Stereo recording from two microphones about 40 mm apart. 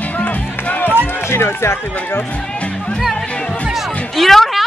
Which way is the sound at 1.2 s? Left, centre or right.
Left.